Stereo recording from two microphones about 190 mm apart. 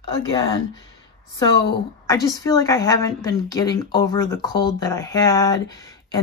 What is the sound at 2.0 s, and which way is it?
A woman's voice, 15° left (ahead or behind).